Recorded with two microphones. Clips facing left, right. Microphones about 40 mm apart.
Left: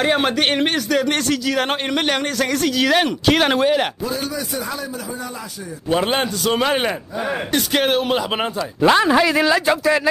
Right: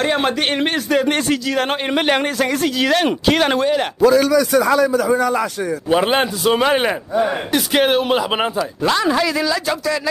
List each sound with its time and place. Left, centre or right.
0.0 s speech: centre
0.7 s a man's voice: centre
3.3 s a man's voice: centre
4.0 s a man's voice: right
5.9 s a man's voice: centre
8.8 s speech: left